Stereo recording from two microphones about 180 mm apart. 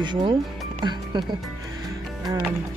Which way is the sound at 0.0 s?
25° right (ahead or behind).